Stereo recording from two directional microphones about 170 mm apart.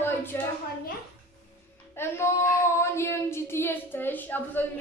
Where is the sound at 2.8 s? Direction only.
15° left (ahead or behind).